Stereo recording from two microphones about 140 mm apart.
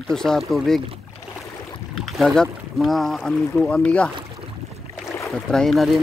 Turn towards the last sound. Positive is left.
turn(degrees=0)  # may be behind; listen again after turning